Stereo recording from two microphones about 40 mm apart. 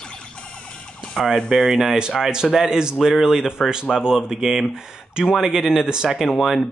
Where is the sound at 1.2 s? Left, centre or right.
Centre.